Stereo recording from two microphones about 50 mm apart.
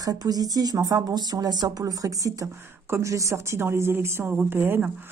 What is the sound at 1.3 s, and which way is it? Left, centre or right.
Speech, right.